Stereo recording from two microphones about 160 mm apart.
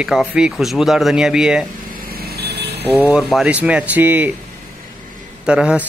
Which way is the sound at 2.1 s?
75° right (ahead or behind).